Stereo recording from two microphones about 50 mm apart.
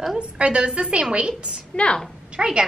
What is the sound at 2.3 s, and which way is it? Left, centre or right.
Speech, centre.